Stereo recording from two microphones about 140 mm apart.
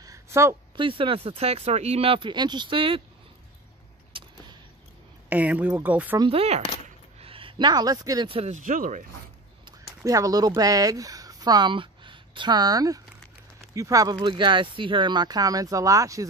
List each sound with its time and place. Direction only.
0.0 s a sound: 20° right (ahead or behind)
0.7 s speech: 40° right (ahead or behind)
4.1 s vehicle: 40° right (ahead or behind)
5.3 s speech: 10° right (ahead or behind)
6.3 s speech: 45° right (ahead or behind); by 8.3 s 25° right (ahead or behind)
8.3 s speech: 45° right (ahead or behind)
8.5 s speech: 70° right (ahead or behind)
10.0 s speech: 25° right (ahead or behind)